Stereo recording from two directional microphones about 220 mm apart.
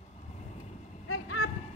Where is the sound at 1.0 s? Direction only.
70° left (ahead or behind).